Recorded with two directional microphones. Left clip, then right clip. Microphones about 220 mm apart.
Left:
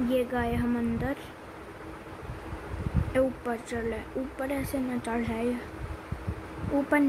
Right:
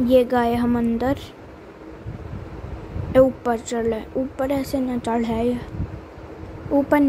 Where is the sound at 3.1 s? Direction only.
20° right (ahead or behind).